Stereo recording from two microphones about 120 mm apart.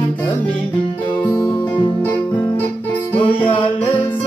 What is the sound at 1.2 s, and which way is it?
Music, 30° left (ahead or behind).